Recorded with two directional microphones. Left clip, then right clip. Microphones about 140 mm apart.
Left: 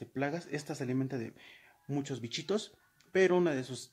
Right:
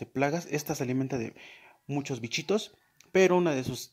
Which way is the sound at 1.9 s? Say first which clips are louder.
Right 4 dB; 15° right (ahead or behind).